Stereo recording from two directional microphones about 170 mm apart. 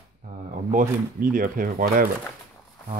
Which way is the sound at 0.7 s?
55° right (ahead or behind).